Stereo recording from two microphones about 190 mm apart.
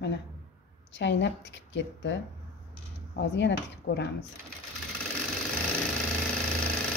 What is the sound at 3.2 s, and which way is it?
Speech, 70° left (ahead or behind).